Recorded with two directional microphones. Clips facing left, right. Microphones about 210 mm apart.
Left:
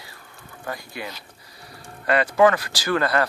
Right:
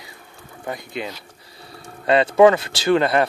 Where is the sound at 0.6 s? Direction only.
20° right (ahead or behind).